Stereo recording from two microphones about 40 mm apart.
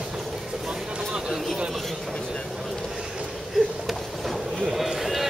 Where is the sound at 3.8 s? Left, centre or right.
Centre.